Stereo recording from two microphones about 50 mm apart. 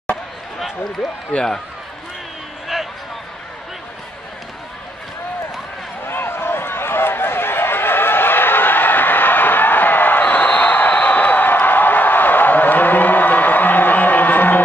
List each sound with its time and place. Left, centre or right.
0.1 s basketball bounce: centre
2.7 s a sound: centre
6.0 s run: left